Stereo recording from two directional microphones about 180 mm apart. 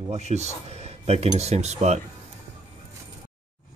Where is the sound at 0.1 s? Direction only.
40° right (ahead or behind).